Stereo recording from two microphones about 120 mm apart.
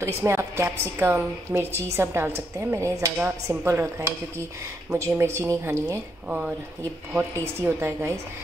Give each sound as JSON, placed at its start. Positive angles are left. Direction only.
{"t": 0.0, "sound": "a woman's voice", "side_deg": -20}
{"t": 6.2, "sound": "a woman's voice", "side_deg": -10}